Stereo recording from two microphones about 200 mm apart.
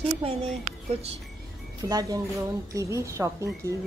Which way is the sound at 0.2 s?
30° right (ahead or behind).